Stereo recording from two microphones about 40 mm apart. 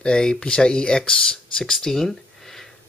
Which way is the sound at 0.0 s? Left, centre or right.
Left.